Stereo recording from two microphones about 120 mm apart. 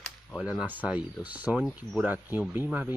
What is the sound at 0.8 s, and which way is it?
Speech, 10° right (ahead or behind).